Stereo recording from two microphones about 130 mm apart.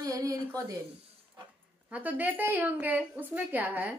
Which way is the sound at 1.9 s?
15° right (ahead or behind).